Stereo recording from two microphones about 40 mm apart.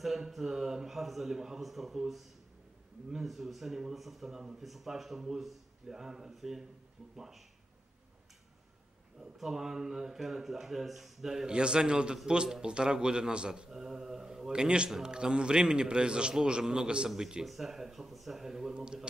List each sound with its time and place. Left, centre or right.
0.0 s speech: centre
9.2 s speech: centre
11.5 s a man's voice: right
13.7 s a man's voice: centre